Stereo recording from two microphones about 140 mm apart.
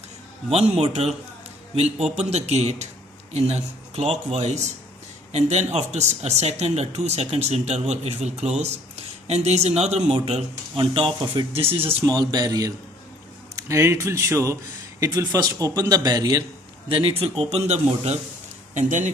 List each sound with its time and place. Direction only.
0.5 s speech: 45° right (ahead or behind)
2.1 s speech: 50° right (ahead or behind)
12.0 s a man's voice: 30° right (ahead or behind)
16.9 s speech: 40° right (ahead or behind)
18.8 s speech: 60° right (ahead or behind)